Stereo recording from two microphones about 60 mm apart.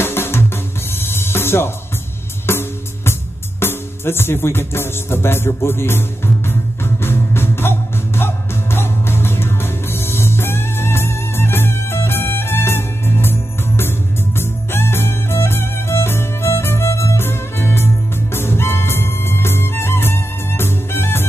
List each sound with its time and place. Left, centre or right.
0.0 s music: left